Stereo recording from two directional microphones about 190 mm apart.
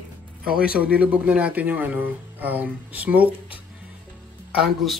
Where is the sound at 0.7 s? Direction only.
5° right (ahead or behind).